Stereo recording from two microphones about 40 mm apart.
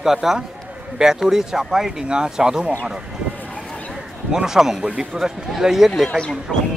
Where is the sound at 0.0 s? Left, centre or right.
Centre.